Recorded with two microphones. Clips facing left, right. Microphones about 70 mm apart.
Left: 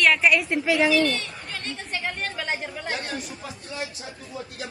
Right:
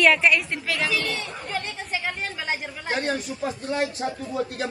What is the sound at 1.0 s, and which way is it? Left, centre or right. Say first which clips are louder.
Chatter: left 4 dB; centre.